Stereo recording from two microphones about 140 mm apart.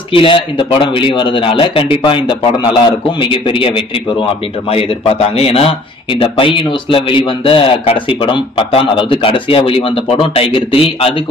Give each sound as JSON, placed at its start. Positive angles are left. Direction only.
{"t": 0.1, "sound": "speech", "side_deg": 40}